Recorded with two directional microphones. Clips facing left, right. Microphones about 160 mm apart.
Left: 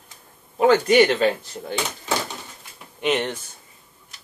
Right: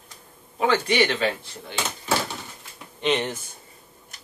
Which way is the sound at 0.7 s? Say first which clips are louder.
Left 6 dB; 40° left (ahead or behind).